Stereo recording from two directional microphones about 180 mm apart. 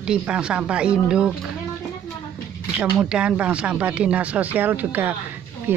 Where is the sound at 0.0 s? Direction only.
5° right (ahead or behind).